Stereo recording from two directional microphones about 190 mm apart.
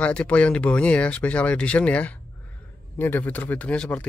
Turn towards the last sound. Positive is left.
turn(degrees=5)  # may be behind; listen again after turning